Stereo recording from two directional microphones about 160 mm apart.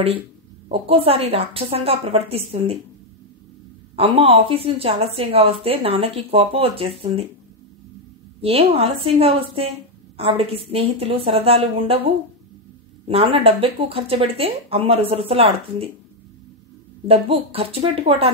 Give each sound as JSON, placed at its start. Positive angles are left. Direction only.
{"t": 0.7, "sound": "a woman's voice", "side_deg": -35}
{"t": 3.9, "sound": "a woman's voice", "side_deg": -35}
{"t": 8.4, "sound": "a woman's voice", "side_deg": -35}
{"t": 17.1, "sound": "a woman's voice", "side_deg": -35}